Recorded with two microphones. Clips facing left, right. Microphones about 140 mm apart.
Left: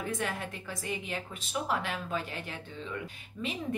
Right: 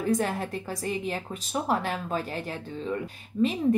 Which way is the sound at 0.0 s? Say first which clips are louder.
Right 8 dB; 40° right (ahead or behind).